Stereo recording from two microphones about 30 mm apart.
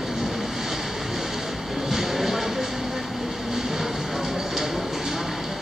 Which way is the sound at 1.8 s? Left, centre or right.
Centre.